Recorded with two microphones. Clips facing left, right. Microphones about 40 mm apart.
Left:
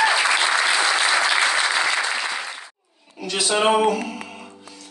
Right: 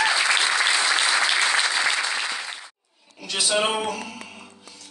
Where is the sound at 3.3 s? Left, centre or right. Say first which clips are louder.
Left 5 dB; centre.